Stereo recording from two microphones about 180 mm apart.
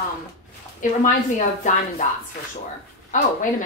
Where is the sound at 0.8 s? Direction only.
45° left (ahead or behind).